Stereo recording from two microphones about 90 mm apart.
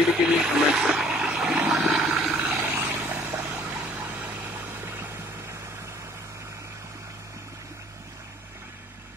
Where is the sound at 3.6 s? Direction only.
5° right (ahead or behind).